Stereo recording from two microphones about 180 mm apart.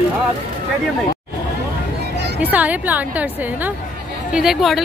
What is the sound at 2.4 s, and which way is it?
A woman's voice, 10° right (ahead or behind).